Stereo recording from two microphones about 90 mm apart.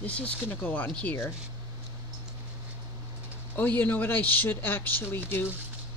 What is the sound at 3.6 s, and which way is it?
Speech, 20° left (ahead or behind).